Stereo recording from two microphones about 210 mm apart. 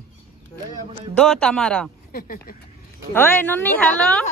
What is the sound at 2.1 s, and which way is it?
Speech, 45° left (ahead or behind).